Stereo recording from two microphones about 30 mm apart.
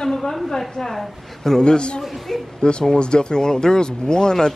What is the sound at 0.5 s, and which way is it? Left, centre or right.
A woman's voice, centre.